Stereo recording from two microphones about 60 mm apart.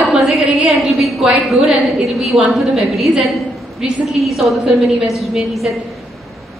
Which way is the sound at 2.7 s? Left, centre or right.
Centre.